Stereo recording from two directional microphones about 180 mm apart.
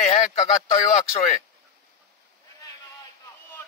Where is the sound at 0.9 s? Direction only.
45° left (ahead or behind).